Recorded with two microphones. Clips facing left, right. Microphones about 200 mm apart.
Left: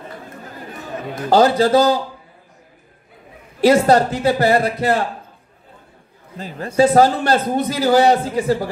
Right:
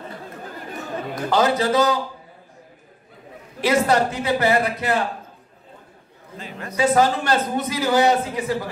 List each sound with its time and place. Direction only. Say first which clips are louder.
1.3 s a man's voice: left 6 dB; 35° left (ahead or behind)
3.6 s a man's voice: left 6 dB; 35° left (ahead or behind)
6.3 s a man's voice: left 9 dB; 35° left (ahead or behind)